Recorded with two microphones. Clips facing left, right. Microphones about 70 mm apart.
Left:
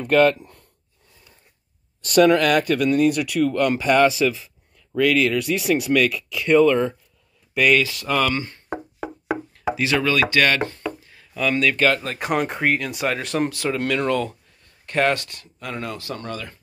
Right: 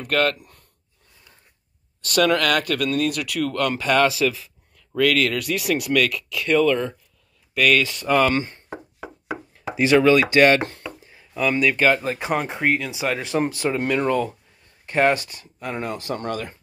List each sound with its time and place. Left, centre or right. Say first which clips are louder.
0.0 s speech: left 5 dB; centre
2.2 s speech: left 2 dB; centre
9.8 s speech: right 6 dB; right
11.1 s speech: right 2 dB; centre
15.6 s speech: right 2 dB; right